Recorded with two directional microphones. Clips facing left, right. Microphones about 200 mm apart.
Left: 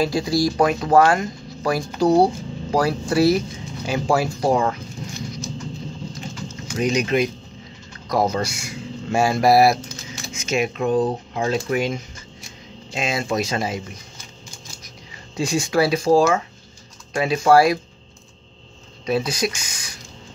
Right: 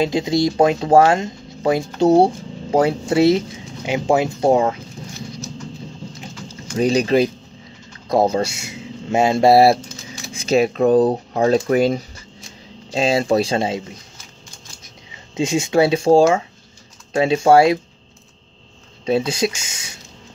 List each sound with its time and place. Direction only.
0.0 s speech: 20° right (ahead or behind)
6.8 s speech: 35° right (ahead or behind)
15.3 s speech: 20° right (ahead or behind)
19.0 s speech: 25° right (ahead or behind)